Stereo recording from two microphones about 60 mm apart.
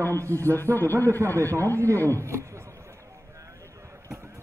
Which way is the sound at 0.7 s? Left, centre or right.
Left.